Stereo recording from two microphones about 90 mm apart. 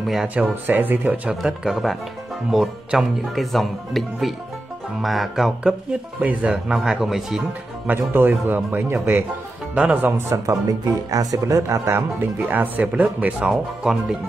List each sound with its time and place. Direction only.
0.0 s speech: centre (ahead or behind)
0.3 s speech: 20° right (ahead or behind)
1.3 s speech: 5° right (ahead or behind)
6.2 s speech: 15° right (ahead or behind)
7.8 s speech: 20° right (ahead or behind)
9.8 s speech: 15° right (ahead or behind)
10.1 s speech: 30° right (ahead or behind); by 13.5 s 15° right (ahead or behind)
13.5 s speech: 5° right (ahead or behind)